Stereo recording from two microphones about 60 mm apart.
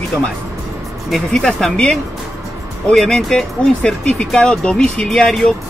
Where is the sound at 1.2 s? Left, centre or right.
Centre.